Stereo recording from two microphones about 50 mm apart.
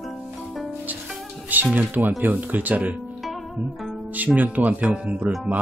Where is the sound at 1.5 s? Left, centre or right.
Right.